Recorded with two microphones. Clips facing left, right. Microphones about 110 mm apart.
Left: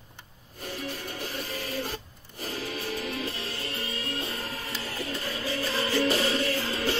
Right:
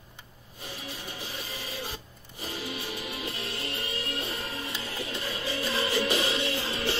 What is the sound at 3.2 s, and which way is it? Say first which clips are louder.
Music: left 1 dB; 30° left (ahead or behind).